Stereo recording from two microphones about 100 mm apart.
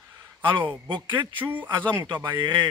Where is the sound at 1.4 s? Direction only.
20° right (ahead or behind).